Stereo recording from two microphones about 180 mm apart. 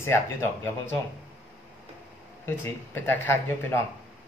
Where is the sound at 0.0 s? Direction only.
15° left (ahead or behind).